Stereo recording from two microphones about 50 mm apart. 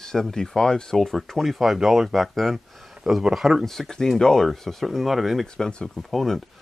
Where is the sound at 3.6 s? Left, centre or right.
Centre.